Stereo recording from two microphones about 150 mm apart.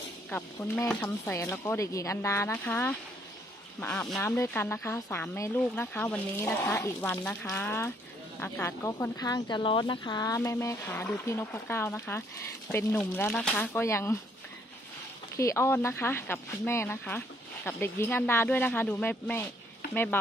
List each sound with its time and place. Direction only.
0.3 s speech: 15° left (ahead or behind)
4.3 s speech: 15° left (ahead or behind)
15.3 s speech: 20° left (ahead or behind)